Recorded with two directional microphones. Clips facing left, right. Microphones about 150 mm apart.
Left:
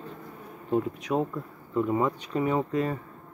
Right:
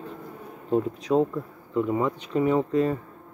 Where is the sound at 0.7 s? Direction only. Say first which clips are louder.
Right 4 dB; 30° right (ahead or behind).